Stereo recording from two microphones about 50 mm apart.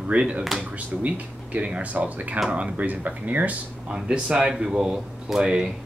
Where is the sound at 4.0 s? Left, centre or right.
Centre.